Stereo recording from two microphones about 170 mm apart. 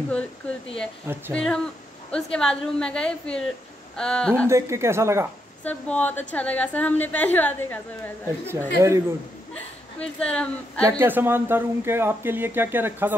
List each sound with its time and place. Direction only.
1.3 s a woman's voice: 5° left (ahead or behind)
4.5 s speech: 15° right (ahead or behind)
5.6 s a woman's voice: 10° left (ahead or behind)
8.5 s speech: 15° right (ahead or behind)
9.5 s a woman's voice: 5° left (ahead or behind)
10.8 s speech: 15° right (ahead or behind)